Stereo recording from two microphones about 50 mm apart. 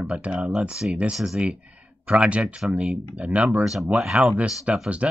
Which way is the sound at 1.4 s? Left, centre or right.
Right.